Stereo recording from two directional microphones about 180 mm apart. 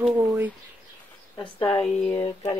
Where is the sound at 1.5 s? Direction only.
25° left (ahead or behind).